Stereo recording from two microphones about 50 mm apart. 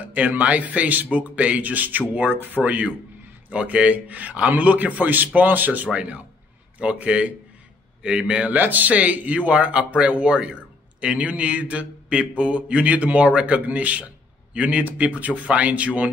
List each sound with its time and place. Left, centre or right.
0.0 s a man's voice: right
8.5 s a man's voice: right